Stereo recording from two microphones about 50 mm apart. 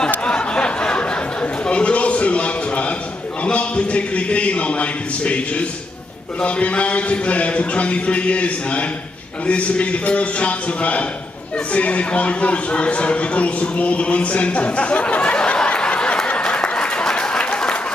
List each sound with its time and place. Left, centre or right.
0.2 s a sound: left
3.4 s speech: left
16.3 s applause: left